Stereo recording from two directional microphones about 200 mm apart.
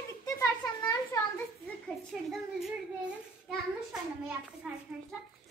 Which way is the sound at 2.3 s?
Centre (ahead or behind).